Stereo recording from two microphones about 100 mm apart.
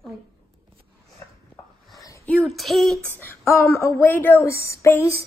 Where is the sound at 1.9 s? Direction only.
30° left (ahead or behind).